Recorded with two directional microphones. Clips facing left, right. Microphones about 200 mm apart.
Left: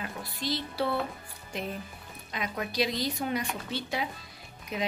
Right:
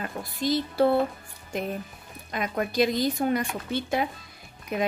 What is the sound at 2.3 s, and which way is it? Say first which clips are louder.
Speech: right 6 dB; 50° right (ahead or behind).